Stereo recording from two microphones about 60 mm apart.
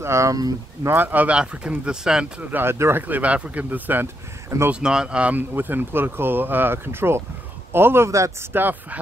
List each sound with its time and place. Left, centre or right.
0.0 s speech: right
0.8 s speech: right; by 2.2 s centre
2.5 s speech: right
3.0 s speech: right
4.7 s speech: centre
5.3 s speech: right
8.1 s speech: right
8.5 s speech: right